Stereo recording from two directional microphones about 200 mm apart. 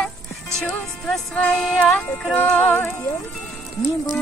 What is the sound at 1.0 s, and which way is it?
Music, 5° left (ahead or behind).